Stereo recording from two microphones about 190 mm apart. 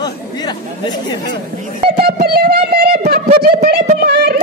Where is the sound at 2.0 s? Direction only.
55° right (ahead or behind).